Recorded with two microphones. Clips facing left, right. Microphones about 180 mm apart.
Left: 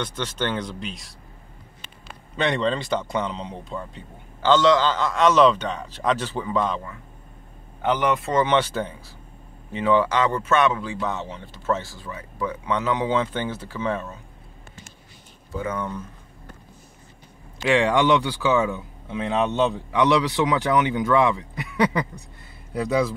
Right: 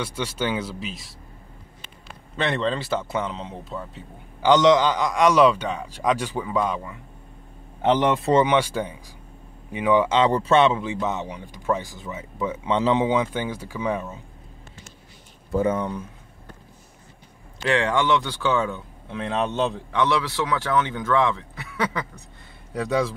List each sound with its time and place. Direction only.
0.0 s a man's voice: 10° right (ahead or behind)
2.3 s speech: centre (ahead or behind)
4.4 s a man's voice: 15° right (ahead or behind)
7.8 s speech: 30° right (ahead or behind)
8.5 s a man's voice: 10° right (ahead or behind)
10.0 s speech: 25° right (ahead or behind)
13.1 s a man's voice: 10° right (ahead or behind)
15.7 s a man's voice: 15° right (ahead or behind)
17.6 s a man's voice: 15° left (ahead or behind)
20.0 s a man's voice: 15° left (ahead or behind)
22.8 s speech: centre (ahead or behind)